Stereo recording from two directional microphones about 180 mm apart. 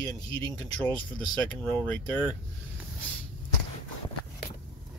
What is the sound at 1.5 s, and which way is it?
Speech, 10° left (ahead or behind).